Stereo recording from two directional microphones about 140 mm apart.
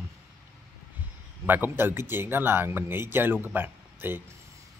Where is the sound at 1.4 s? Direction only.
15° right (ahead or behind).